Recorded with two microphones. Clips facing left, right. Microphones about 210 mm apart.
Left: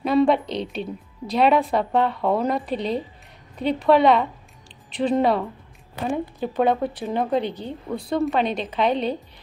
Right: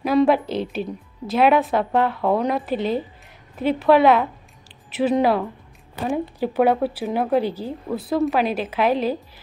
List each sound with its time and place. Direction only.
0.0 s a woman's voice: 5° right (ahead or behind)